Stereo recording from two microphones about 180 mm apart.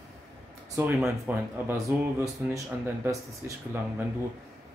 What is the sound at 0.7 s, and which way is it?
Speech, 15° right (ahead or behind).